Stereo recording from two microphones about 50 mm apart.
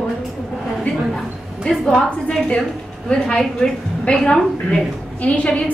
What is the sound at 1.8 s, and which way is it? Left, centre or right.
A woman's voice, centre.